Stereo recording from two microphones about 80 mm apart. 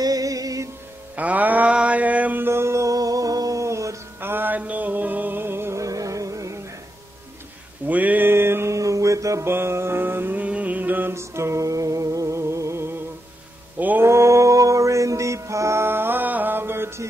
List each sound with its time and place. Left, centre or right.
0.0 s music: right
1.1 s mantra: centre
2.4 s music: right
4.2 s music: right
5.9 s music: right
7.8 s music: centre
13.7 s mantra: right
14.0 s music: right